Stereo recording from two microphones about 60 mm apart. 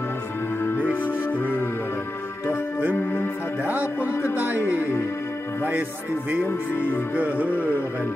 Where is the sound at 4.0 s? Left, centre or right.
Left.